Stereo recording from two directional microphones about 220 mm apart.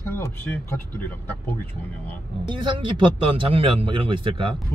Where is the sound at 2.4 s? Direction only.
20° right (ahead or behind).